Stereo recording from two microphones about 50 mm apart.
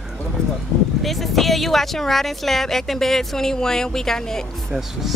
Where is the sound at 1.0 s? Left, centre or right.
Centre.